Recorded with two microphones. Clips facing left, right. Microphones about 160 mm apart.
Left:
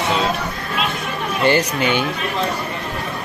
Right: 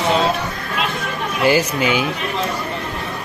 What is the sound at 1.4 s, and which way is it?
Speech, 5° right (ahead or behind).